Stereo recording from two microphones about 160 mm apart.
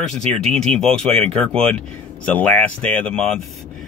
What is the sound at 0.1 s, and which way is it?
Speech, 5° left (ahead or behind).